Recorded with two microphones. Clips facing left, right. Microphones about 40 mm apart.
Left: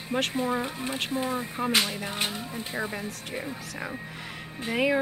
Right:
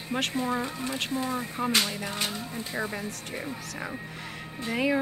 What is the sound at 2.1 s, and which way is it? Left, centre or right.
Speech, left.